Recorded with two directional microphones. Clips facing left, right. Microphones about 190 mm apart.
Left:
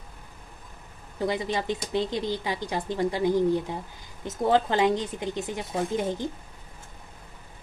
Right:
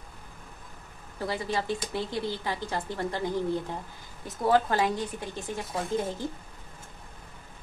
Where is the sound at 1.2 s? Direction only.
20° left (ahead or behind).